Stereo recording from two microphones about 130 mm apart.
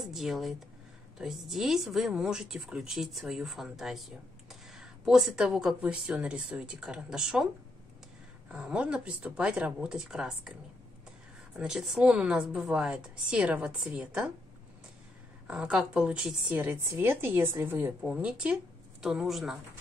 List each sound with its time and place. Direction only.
0.0 s speech: centre (ahead or behind)
8.5 s a woman's voice: 10° right (ahead or behind)
11.5 s a woman's voice: 5° right (ahead or behind)
15.4 s a woman's voice: 10° right (ahead or behind)